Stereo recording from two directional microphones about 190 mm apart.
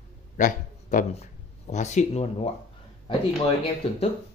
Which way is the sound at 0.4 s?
45° left (ahead or behind).